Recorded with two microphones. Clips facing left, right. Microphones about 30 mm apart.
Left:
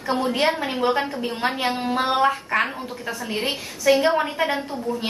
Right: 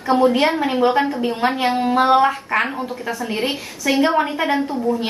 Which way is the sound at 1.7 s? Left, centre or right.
Centre.